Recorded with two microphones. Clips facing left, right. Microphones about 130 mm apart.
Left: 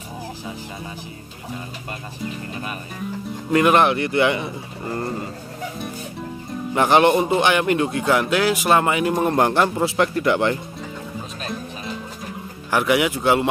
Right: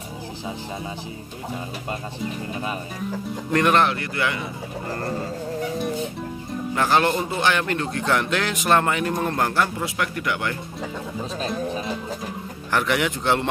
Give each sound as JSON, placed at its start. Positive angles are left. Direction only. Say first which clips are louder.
{"t": 3.5, "sound": "a man's voice", "louder": "left 3 dB", "side_deg": 10}
{"t": 6.7, "sound": "a man's voice", "louder": "left 5 dB", "side_deg": 20}
{"t": 12.7, "sound": "a man's voice", "louder": "left 4 dB", "side_deg": 5}